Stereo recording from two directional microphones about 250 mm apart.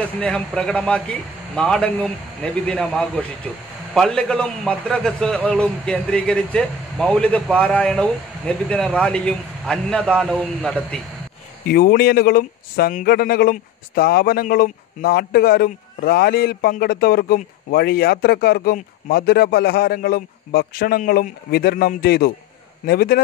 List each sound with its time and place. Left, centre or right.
0.2 s a man's voice: centre
11.6 s speech: left